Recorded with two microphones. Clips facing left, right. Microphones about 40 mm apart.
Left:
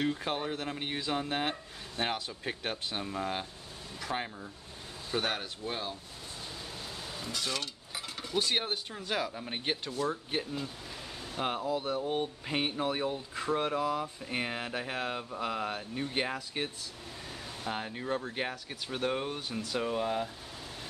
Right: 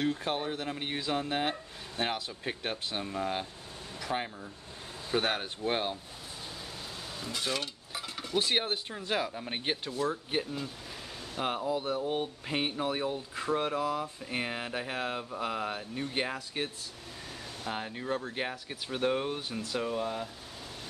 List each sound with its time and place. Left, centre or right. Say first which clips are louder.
0.0 s speech: right 1 dB; centre
5.1 s speech: right 3 dB; centre
5.6 s speech: right 6 dB; right
7.3 s speech: right 2 dB; centre
7.9 s a sound: right 2 dB; centre
8.4 s speech: right 2 dB; centre
19.9 s speech: left 2 dB; centre